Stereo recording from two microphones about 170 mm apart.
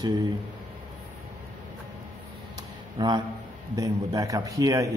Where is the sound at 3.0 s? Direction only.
25° right (ahead or behind).